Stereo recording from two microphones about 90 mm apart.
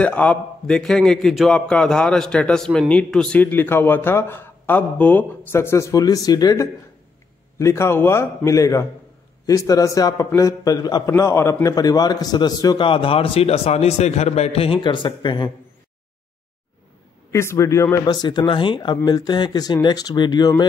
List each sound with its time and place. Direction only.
0.0 s a man's voice: 15° left (ahead or behind)
3.3 s speech: 25° left (ahead or behind); by 6.7 s 40° left (ahead or behind)
7.5 s a man's voice: 30° left (ahead or behind); by 11.1 s 50° left (ahead or behind)
11.1 s a man's voice: 30° left (ahead or behind)
11.7 s a man's voice: 45° left (ahead or behind)
12.7 s a man's voice: 75° left (ahead or behind); by 13.5 s 90° left
14.5 s speech: 90° left; by 15.5 s 60° left (ahead or behind)
17.3 s a man's voice: 35° left (ahead or behind)
18.0 s speech: 55° left (ahead or behind)
19.0 s a man's voice: 50° left (ahead or behind)